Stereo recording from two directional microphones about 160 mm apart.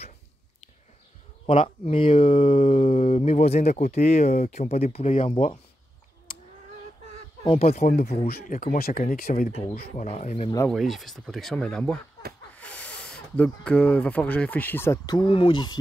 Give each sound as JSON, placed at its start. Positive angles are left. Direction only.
{"t": 1.4, "sound": "speech", "side_deg": 35}
{"t": 7.4, "sound": "speech", "side_deg": 40}
{"t": 8.3, "sound": "speech", "side_deg": 65}
{"t": 10.0, "sound": "speech", "side_deg": 45}
{"t": 10.7, "sound": "speech", "side_deg": 0}
{"t": 15.0, "sound": "speech", "side_deg": 30}